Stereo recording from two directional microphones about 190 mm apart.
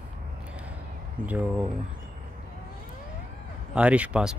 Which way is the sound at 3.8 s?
5° right (ahead or behind).